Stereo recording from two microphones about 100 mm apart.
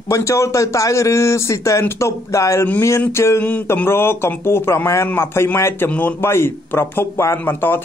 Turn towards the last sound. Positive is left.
turn(degrees=20)  # may be behind; listen again after turning